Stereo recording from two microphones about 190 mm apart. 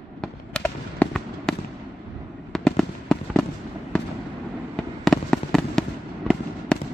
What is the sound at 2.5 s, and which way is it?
Fireworks, 5° left (ahead or behind).